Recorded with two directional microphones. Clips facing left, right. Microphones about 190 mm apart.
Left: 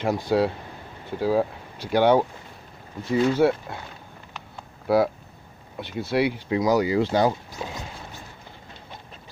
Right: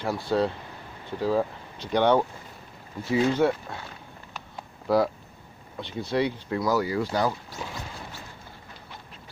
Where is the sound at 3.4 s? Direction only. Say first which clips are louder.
Left 3 dB; 10° left (ahead or behind).